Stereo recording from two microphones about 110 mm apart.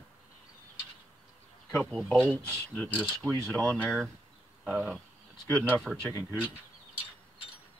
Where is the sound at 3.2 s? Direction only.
35° right (ahead or behind).